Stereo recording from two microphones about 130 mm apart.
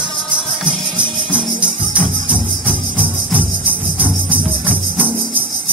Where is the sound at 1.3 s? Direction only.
10° right (ahead or behind).